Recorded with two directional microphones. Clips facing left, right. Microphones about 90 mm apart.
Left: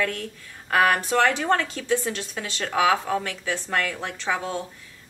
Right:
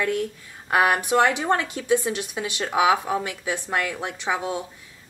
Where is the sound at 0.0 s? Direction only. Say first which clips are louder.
Right 3 dB; 15° right (ahead or behind).